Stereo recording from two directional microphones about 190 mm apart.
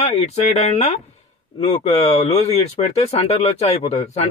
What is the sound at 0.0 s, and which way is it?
Speech, 35° left (ahead or behind).